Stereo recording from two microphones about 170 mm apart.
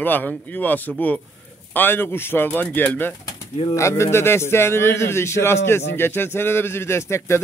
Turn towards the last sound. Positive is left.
turn(degrees=15)  # may be behind; listen again after turning